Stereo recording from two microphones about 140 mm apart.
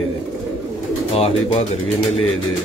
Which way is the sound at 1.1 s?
45° left (ahead or behind).